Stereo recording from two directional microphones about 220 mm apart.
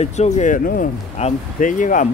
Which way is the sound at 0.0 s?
30° left (ahead or behind).